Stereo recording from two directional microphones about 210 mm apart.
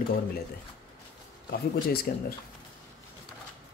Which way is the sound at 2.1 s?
45° left (ahead or behind).